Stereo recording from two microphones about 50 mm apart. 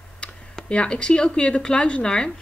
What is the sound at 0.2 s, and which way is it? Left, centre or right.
A woman's voice, left.